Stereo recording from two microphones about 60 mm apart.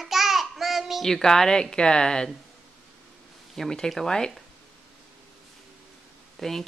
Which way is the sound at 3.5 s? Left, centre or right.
Centre.